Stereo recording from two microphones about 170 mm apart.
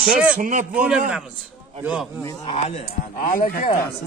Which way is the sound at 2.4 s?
35° left (ahead or behind).